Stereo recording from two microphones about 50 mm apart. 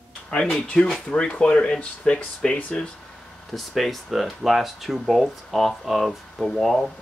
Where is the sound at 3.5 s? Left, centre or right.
Centre.